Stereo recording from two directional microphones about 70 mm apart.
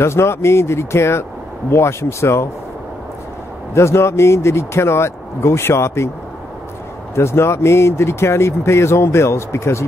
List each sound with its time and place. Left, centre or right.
0.0 s speech: left
3.7 s speech: left
7.2 s speech: left